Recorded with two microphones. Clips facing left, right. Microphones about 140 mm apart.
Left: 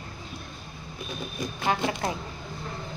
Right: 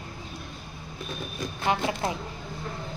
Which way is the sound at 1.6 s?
25° right (ahead or behind).